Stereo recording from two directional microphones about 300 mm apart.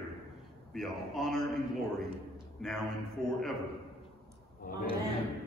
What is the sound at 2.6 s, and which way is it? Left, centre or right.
Speech, centre.